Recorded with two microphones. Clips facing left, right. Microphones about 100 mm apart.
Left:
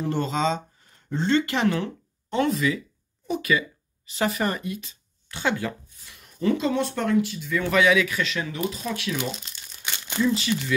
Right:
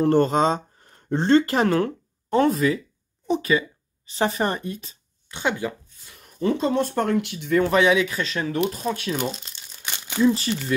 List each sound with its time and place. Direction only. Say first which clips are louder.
0.0 s speech: right 7 dB; 50° right (ahead or behind); by 4.9 s 35° right (ahead or behind)
5.3 s speech: right 1 dB; 20° right (ahead or behind)
6.0 s speech: right 1 dB; 35° right (ahead or behind)
7.2 s speech: right 3 dB; 65° right (ahead or behind)
7.6 s speech: even; 30° right (ahead or behind)
9.8 s crumpling: even; 15° right (ahead or behind)
10.2 s speech: right 4 dB; 35° right (ahead or behind)